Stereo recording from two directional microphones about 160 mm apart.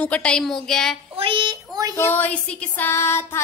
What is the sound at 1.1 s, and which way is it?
Child singing, 35° right (ahead or behind).